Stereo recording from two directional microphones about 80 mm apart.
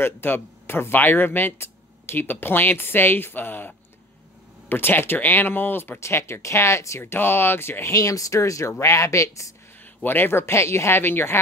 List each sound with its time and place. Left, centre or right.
0.0 s speech: left
7.9 s speech: left
10.0 s speech: left